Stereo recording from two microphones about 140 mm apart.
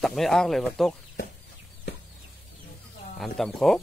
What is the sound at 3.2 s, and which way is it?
Speech, centre (ahead or behind).